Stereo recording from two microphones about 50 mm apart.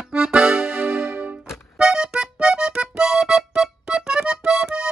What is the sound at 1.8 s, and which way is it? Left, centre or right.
Music, centre.